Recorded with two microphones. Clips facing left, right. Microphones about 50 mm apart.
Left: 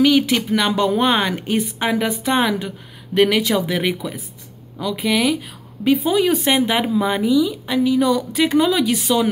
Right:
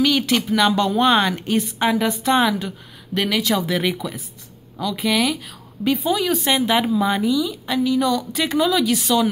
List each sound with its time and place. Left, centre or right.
0.0 s a woman's voice: centre
3.2 s a woman's voice: left; by 5.4 s centre
5.9 s speech: left
8.9 s a woman's voice: centre